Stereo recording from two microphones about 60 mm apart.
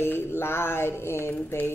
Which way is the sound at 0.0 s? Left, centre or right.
Left.